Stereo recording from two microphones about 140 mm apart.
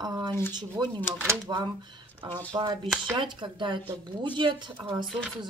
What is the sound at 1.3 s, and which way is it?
A woman's voice, 30° right (ahead or behind).